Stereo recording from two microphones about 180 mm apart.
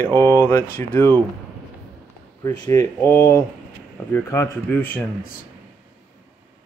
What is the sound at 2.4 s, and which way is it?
Speech, 15° left (ahead or behind).